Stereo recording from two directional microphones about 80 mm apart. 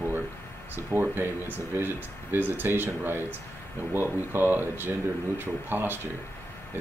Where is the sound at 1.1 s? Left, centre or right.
Right.